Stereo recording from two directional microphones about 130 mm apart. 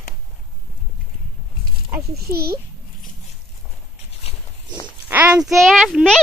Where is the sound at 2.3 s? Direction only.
20° right (ahead or behind).